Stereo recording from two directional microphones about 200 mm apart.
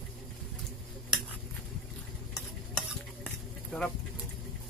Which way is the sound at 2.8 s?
5° left (ahead or behind).